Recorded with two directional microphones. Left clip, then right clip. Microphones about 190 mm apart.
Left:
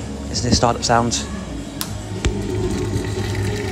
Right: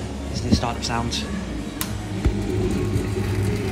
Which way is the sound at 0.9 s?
35° left (ahead or behind).